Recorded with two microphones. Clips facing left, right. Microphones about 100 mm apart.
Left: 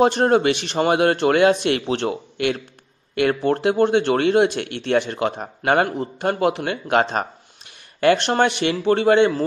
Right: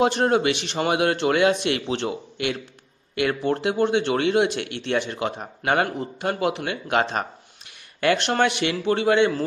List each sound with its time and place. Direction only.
0.0 s a man's voice: 40° left (ahead or behind)
5.6 s a man's voice: 40° left (ahead or behind)